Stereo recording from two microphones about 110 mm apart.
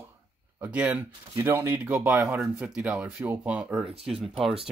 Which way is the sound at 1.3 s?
25° right (ahead or behind).